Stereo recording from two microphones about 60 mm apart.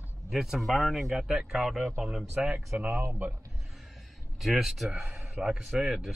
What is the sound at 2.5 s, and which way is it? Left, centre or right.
Speech, right.